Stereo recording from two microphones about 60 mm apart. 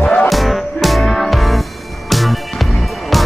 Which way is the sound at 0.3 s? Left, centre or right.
Centre.